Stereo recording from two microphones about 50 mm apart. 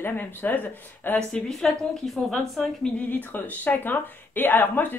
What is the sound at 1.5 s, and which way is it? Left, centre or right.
A woman's voice, centre.